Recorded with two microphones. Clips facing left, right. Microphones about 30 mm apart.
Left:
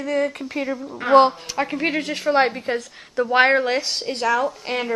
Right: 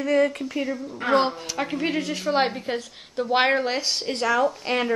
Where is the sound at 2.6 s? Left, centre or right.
Left.